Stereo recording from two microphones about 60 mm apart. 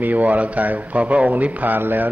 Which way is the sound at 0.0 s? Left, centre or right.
Right.